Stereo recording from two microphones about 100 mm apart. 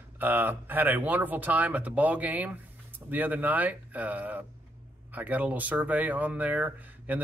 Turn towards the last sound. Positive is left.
turn(degrees=-15)  # may be behind; listen again after turning